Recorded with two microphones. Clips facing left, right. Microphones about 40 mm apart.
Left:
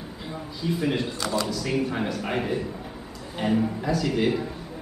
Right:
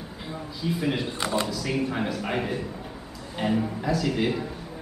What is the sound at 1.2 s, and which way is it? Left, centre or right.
Speech, right.